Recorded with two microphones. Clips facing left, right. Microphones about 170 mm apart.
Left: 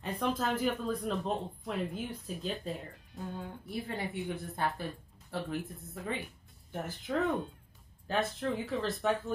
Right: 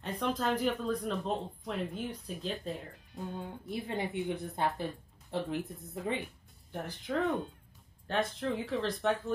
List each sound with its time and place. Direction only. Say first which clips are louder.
0.0 s speech: even; 5° left (ahead or behind)
3.6 s a woman's voice: right 2 dB; 20° right (ahead or behind)
6.7 s speech: left 1 dB; centre (ahead or behind)